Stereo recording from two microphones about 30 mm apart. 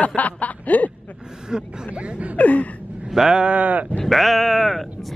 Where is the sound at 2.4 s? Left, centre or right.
Left.